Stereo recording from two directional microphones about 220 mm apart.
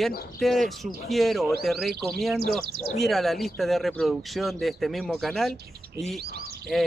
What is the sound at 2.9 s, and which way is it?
Speech, centre (ahead or behind).